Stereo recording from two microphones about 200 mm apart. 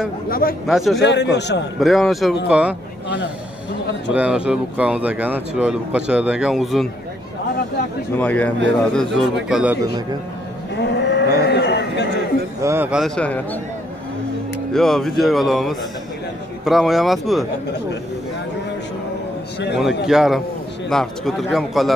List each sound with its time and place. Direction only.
0.3 s speech: 45° left (ahead or behind)
0.7 s speech: centre (ahead or behind)
1.0 s a man's voice: 60° left (ahead or behind)
1.8 s speech: centre (ahead or behind)
4.1 s speech: 5° right (ahead or behind)
8.2 s speech: 5° left (ahead or behind)
10.8 s cattle: 60° left (ahead or behind)
11.4 s a sound: 55° left (ahead or behind)
12.6 s speech: 10° right (ahead or behind)
14.7 s speech: centre (ahead or behind)
19.8 s speech: centre (ahead or behind)